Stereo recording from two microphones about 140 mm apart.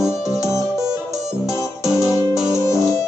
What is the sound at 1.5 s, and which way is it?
Music, 20° left (ahead or behind).